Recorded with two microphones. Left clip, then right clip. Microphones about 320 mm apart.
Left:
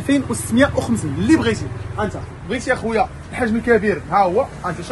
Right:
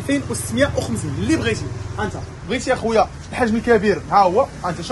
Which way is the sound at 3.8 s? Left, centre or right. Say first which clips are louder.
Right 1 dB; centre.